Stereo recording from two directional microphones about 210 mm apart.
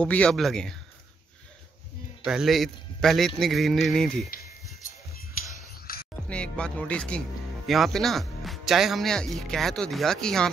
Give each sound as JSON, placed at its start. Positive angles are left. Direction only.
{"t": 0.0, "sound": "speech", "side_deg": 5}
{"t": 2.2, "sound": "speech", "side_deg": 0}
{"t": 5.9, "sound": "music", "side_deg": 45}
{"t": 6.2, "sound": "speech", "side_deg": 5}